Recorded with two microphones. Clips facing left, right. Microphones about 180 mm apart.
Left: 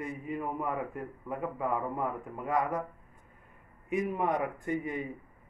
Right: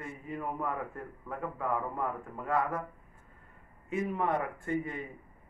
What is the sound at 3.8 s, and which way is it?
Speech, 15° left (ahead or behind).